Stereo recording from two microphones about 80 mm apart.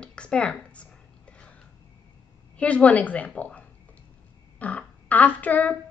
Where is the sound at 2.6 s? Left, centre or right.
Centre.